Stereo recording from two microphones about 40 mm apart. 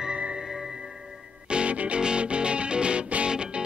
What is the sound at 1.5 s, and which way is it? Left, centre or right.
Music, right.